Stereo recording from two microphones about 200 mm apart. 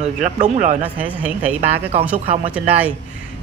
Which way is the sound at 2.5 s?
5° right (ahead or behind).